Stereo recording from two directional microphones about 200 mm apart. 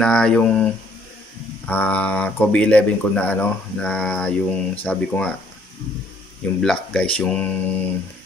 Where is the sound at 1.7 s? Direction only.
10° left (ahead or behind).